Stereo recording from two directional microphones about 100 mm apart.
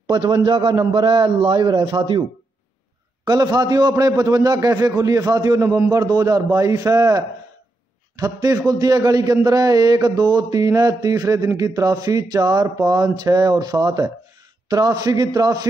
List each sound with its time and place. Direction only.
0.0 s a man's voice: 50° right (ahead or behind)
3.3 s a man's voice: 40° right (ahead or behind)